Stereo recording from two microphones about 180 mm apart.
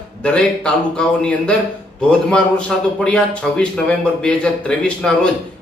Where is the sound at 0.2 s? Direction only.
5° left (ahead or behind).